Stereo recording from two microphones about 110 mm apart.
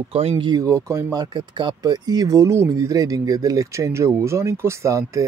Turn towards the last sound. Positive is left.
turn(degrees=-30)  # may be behind; listen again after turning